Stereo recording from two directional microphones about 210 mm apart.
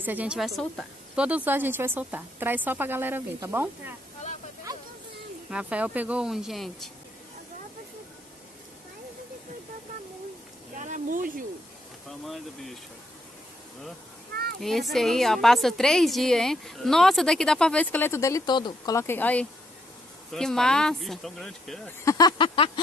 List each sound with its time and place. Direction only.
0.0 s speech: 10° right (ahead or behind)
5.5 s a woman's voice: 5° right (ahead or behind)
10.8 s a sound: 40° right (ahead or behind)
12.1 s a woman's voice: centre (ahead or behind)
14.6 s a woman's voice: centre (ahead or behind)
22.0 s a sound: 15° left (ahead or behind)